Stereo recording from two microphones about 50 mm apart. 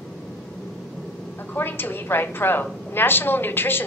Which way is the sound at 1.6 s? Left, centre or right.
Left.